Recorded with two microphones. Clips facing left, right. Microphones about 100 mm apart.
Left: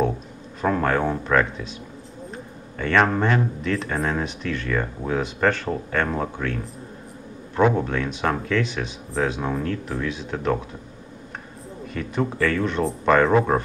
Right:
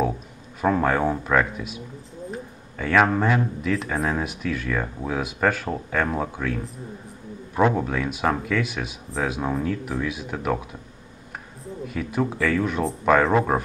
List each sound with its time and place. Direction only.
0.6 s speech: 5° right (ahead or behind)
2.8 s speech: 5° right (ahead or behind)
11.6 s speech: 5° right (ahead or behind)